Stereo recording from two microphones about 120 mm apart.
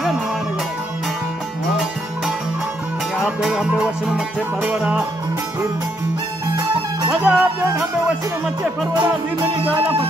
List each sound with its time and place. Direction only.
3.2 s music: 5° right (ahead or behind)
7.1 s music: 10° right (ahead or behind)